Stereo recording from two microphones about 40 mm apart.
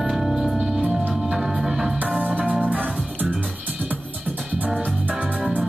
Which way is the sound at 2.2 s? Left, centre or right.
Right.